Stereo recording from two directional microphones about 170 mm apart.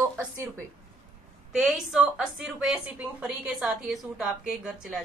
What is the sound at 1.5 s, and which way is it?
A woman's voice, 5° right (ahead or behind).